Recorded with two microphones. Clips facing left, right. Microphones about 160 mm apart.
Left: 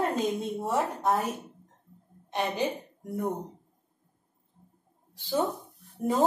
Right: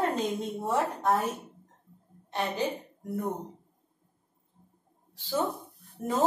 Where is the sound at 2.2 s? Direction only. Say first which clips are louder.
Left 1 dB; 15° left (ahead or behind).